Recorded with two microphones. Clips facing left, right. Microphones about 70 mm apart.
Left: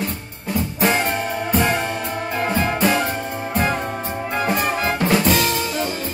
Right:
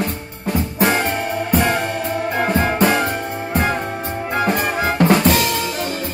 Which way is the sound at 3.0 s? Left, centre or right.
Right.